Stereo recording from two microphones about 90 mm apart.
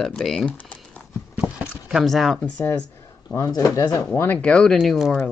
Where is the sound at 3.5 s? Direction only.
45° left (ahead or behind).